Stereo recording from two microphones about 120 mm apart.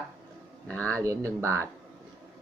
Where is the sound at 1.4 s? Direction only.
25° right (ahead or behind).